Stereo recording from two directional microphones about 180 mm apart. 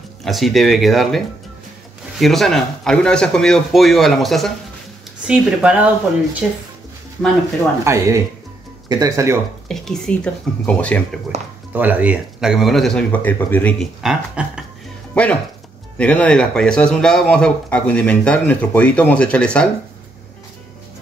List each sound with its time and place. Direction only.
0.2 s speech: centre (ahead or behind)
7.8 s speech: 15° right (ahead or behind)
9.7 s speech: 5° left (ahead or behind)
11.3 s speech: 35° right (ahead or behind)
11.7 s speech: 10° right (ahead or behind); by 13.8 s 10° left (ahead or behind)
14.0 s speech: 5° right (ahead or behind)
15.2 s speech: 5° left (ahead or behind)